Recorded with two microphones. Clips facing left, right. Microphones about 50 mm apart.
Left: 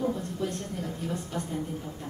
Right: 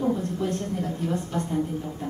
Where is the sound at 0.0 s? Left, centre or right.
Centre.